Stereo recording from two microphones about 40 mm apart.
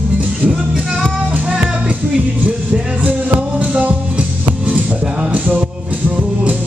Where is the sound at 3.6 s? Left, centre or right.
Right.